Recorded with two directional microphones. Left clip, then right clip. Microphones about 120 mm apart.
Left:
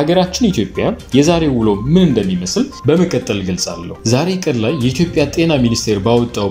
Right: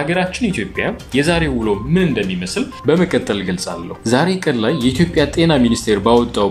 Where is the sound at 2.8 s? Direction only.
5° left (ahead or behind).